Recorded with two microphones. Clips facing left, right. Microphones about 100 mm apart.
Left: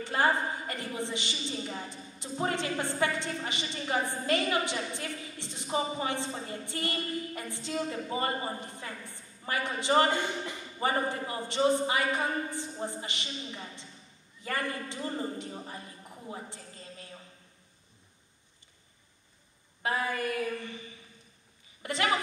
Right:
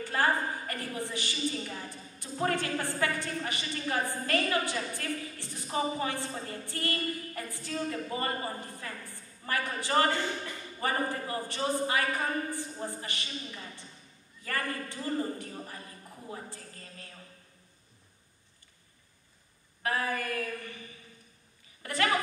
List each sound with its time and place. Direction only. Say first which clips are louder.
0.0 s a woman's voice: left 1 dB; 20° left (ahead or behind)
16.3 s a sound: left 1 dB; 20° left (ahead or behind)
19.8 s a woman's voice: left 1 dB; 20° left (ahead or behind)
21.8 s a woman's voice: even; 20° left (ahead or behind)